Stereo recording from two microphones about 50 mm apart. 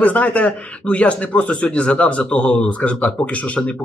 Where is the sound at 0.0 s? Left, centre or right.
Left.